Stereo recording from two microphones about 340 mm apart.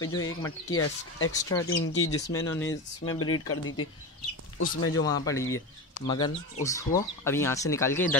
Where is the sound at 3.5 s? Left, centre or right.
Left.